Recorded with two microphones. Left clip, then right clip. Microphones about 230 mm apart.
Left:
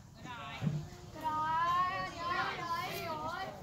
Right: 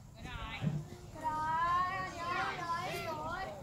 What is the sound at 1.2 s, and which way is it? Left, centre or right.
Children playing, left.